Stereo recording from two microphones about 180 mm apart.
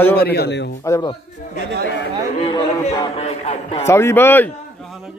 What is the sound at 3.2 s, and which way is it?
Music, 35° left (ahead or behind).